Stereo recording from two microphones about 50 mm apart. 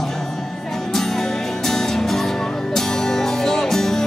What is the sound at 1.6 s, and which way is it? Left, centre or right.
Music, centre.